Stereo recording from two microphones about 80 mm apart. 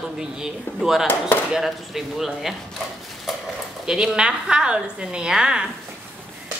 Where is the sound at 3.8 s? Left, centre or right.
Centre.